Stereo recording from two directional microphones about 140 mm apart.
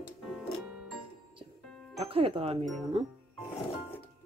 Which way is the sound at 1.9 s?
40° right (ahead or behind).